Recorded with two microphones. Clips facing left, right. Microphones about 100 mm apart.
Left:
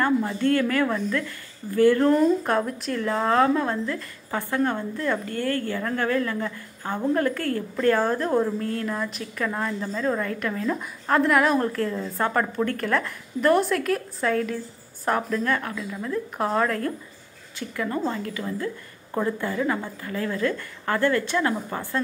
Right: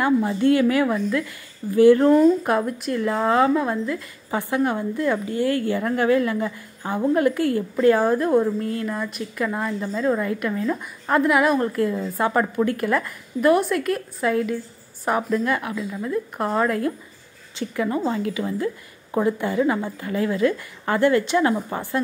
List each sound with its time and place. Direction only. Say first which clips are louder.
0.0 s a woman's voice: right 3 dB; 15° right (ahead or behind)